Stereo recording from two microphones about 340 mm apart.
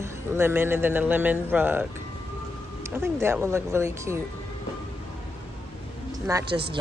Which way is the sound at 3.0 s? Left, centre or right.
Centre.